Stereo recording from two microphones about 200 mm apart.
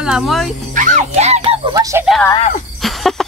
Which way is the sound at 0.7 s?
40° right (ahead or behind).